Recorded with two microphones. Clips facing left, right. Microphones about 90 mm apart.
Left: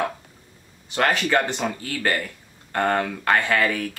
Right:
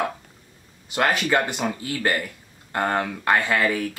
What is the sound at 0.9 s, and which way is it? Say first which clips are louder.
Speech: even; 10° right (ahead or behind).